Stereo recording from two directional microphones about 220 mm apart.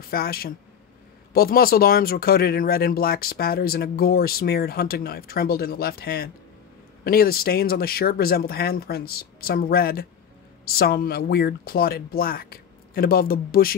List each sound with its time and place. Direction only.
0.0 s speech: 45° left (ahead or behind)